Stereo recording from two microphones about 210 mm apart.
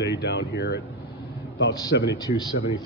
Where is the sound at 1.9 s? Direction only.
55° left (ahead or behind).